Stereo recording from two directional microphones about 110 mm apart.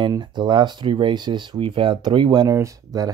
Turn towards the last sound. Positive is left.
turn(degrees=-30)  # may be behind; listen again after turning